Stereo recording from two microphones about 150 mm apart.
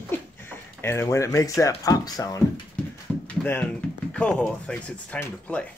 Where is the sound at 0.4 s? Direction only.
15° left (ahead or behind).